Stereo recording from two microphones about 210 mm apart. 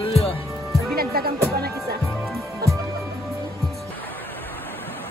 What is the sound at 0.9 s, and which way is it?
Music, 45° right (ahead or behind).